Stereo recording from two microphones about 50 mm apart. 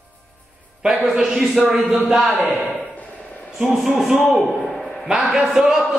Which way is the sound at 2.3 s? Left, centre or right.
Right.